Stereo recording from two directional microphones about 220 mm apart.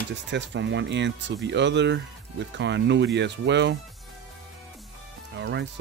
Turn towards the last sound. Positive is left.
turn(degrees=-50)  # may be behind; listen again after turning